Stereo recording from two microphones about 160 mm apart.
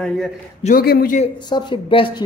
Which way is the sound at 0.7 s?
70° left (ahead or behind).